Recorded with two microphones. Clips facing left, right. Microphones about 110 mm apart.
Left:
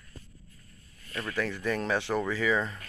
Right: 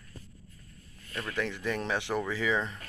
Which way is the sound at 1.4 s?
15° right (ahead or behind).